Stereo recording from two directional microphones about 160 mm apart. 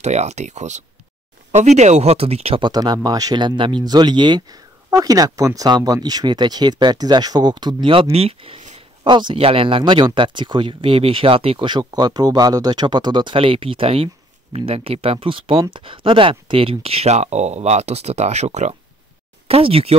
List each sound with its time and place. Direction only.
0.0 s speech: 45° right (ahead or behind)